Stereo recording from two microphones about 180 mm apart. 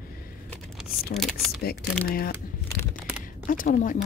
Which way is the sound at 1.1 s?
55° left (ahead or behind).